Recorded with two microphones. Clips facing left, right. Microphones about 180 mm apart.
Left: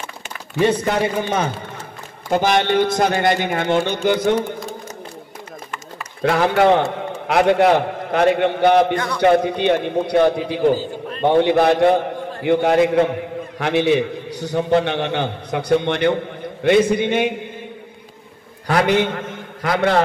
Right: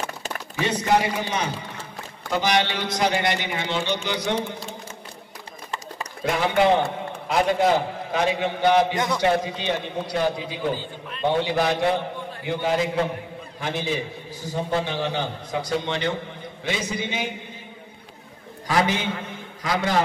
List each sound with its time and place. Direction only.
0.6 s a man's voice: 50° left (ahead or behind)
6.2 s a man's voice: 60° left (ahead or behind)
10.7 s a man's voice: 40° left (ahead or behind)
12.4 s a man's voice: 60° left (ahead or behind)
18.7 s a man's voice: 60° left (ahead or behind)